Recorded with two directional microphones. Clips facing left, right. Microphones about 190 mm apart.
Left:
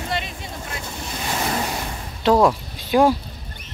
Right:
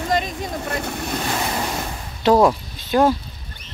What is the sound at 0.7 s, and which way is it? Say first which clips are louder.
Boat: right 6 dB; 60° right (ahead or behind).